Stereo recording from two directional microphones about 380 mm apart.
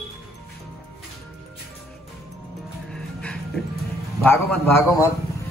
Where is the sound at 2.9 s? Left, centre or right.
Centre.